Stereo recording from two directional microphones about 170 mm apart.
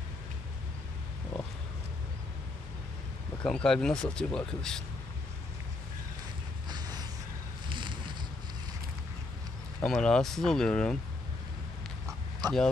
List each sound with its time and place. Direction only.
3.4 s speech: 5° left (ahead or behind)
6.7 s a sound: 25° right (ahead or behind)
9.8 s speech: 5° left (ahead or behind)
12.4 s speech: 25° right (ahead or behind)